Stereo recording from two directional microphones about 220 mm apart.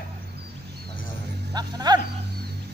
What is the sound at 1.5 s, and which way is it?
Speech, 20° right (ahead or behind).